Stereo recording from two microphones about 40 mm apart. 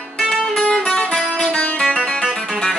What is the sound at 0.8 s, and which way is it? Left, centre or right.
Music, left.